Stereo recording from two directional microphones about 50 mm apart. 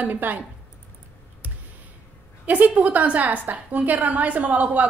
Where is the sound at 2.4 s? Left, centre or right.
Right.